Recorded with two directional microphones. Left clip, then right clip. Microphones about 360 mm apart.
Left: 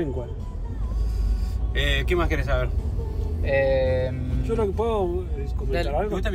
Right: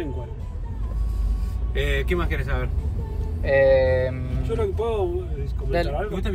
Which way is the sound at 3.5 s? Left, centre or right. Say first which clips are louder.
Right 4 dB; centre.